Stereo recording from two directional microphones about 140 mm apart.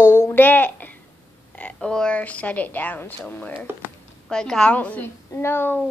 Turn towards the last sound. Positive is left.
turn(degrees=15)  # may be behind; listen again after turning